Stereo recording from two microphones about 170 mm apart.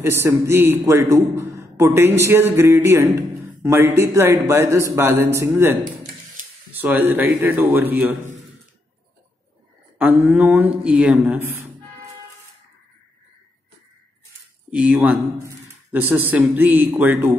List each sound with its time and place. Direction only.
0.0 s a man's voice: 15° right (ahead or behind)
9.9 s a man's voice: 5° right (ahead or behind)
14.7 s a man's voice: 10° right (ahead or behind)